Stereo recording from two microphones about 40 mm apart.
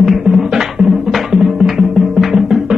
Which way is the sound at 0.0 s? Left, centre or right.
Centre.